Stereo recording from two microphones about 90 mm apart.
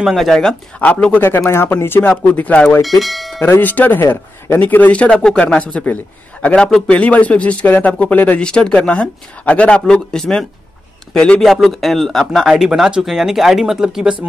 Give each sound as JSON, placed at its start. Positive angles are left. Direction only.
{"t": 0.0, "sound": "speech", "side_deg": 0}
{"t": 0.7, "sound": "a man's voice", "side_deg": 15}
{"t": 3.0, "sound": "speech", "side_deg": 0}
{"t": 3.3, "sound": "a man's voice", "side_deg": 25}
{"t": 11.4, "sound": "speech", "side_deg": 0}